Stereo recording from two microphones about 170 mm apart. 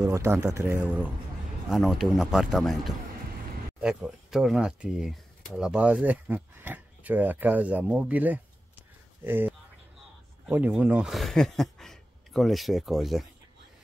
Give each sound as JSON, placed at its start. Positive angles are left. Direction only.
{"t": 0.0, "sound": "speech", "side_deg": -15}